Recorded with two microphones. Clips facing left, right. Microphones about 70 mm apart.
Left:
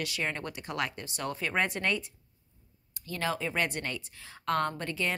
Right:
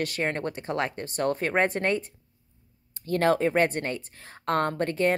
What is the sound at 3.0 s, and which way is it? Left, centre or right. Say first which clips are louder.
Speech: right 10 dB; right.